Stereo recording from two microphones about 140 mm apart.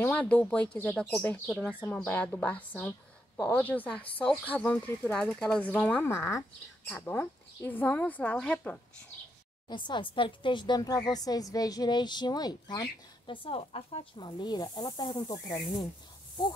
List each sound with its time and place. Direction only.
0.0 s speech: 10° left (ahead or behind)
9.7 s speech: 35° left (ahead or behind)